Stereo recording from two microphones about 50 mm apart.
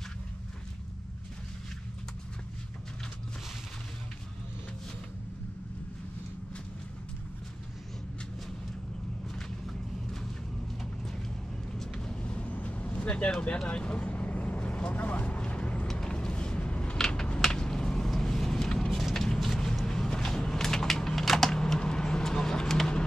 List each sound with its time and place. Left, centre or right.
10.8 s vehicle: centre
12.2 s vehicle: left
15.9 s a sound: centre